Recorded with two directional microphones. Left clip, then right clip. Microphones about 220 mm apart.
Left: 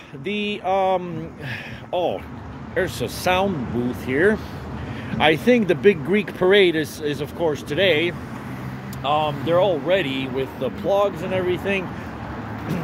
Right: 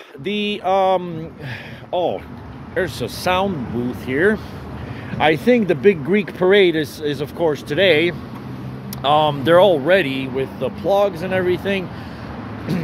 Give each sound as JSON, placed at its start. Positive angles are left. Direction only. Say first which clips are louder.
{"t": 0.2, "sound": "speech", "louder": "right 3 dB", "side_deg": -25}
{"t": 9.0, "sound": "speech", "louder": "right 6 dB", "side_deg": -40}
{"t": 9.9, "sound": "speech", "louder": "right 4 dB", "side_deg": -15}